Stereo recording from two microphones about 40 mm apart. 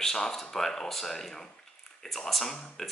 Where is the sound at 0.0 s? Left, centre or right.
Centre.